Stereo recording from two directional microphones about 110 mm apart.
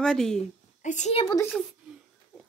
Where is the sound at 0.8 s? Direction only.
90° left.